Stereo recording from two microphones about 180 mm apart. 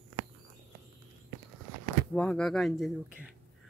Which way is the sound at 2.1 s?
5° left (ahead or behind).